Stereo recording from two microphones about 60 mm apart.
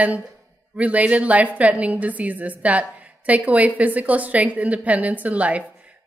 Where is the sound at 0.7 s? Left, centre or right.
Right.